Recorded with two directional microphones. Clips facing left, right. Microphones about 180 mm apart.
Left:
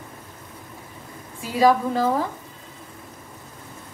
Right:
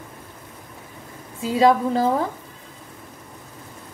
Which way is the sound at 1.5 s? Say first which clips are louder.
Right 1 dB; 25° right (ahead or behind).